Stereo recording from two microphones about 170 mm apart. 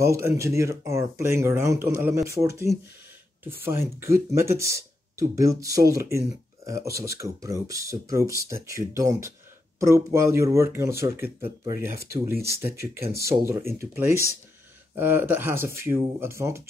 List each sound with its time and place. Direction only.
0.0 s speech: 15° right (ahead or behind)